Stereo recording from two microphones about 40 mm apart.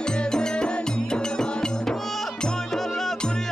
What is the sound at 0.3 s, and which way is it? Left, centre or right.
Music, centre.